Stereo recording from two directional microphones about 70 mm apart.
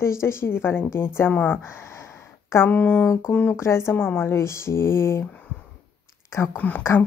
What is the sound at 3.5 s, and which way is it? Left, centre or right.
A woman's voice, left.